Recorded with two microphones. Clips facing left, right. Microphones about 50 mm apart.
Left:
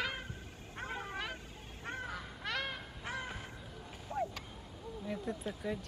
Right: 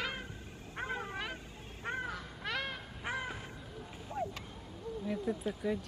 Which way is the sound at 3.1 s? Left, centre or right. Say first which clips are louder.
Right 3 dB; centre.